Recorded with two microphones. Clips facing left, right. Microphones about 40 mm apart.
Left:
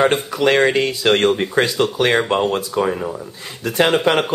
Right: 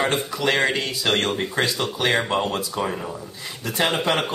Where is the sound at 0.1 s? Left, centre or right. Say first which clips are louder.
Left 6 dB; left.